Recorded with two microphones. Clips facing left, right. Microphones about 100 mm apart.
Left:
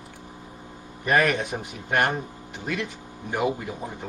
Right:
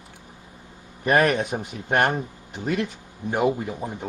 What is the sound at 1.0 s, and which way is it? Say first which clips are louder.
Speech: right 2 dB; 40° right (ahead or behind).